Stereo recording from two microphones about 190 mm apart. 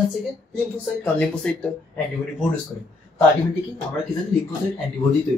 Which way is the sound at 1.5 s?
5° left (ahead or behind).